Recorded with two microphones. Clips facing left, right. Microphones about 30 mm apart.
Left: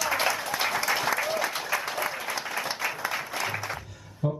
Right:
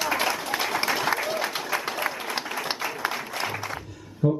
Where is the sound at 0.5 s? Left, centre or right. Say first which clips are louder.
Right 1 dB; right.